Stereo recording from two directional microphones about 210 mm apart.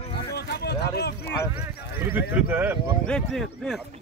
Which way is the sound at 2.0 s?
10° right (ahead or behind).